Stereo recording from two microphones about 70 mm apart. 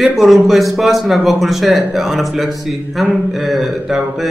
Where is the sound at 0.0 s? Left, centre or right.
Centre.